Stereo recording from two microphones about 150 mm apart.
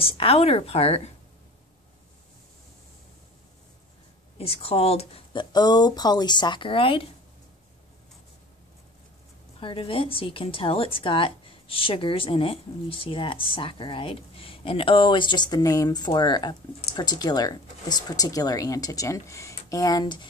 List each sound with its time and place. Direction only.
0.0 s a woman's voice: 40° left (ahead or behind)
4.4 s a woman's voice: 40° left (ahead or behind)
9.6 s a woman's voice: 35° left (ahead or behind)